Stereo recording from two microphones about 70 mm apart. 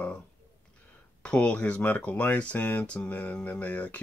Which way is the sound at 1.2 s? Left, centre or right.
Centre.